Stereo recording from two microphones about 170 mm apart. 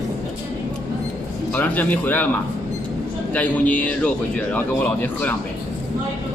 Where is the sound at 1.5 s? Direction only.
10° left (ahead or behind).